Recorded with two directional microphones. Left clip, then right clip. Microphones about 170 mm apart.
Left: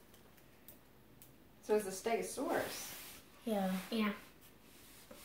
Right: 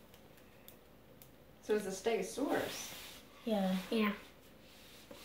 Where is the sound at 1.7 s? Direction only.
25° left (ahead or behind).